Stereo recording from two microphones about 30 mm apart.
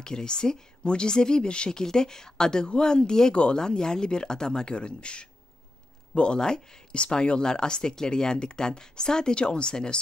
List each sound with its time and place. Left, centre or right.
0.0 s speech: left